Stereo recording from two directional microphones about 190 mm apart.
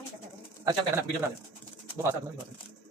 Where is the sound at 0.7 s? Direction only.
20° right (ahead or behind).